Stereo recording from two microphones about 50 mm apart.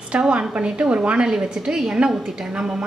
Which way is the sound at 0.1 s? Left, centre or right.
Right.